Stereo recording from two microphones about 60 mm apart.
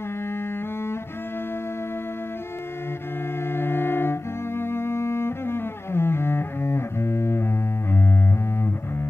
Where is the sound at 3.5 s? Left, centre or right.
Left.